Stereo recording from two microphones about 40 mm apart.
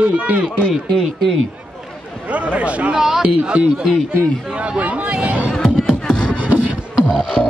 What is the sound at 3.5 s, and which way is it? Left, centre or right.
Speech, right.